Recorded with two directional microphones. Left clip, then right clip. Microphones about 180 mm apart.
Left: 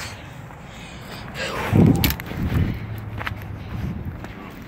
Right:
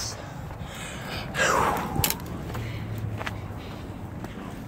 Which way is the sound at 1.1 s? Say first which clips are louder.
Right 4 dB; 20° right (ahead or behind).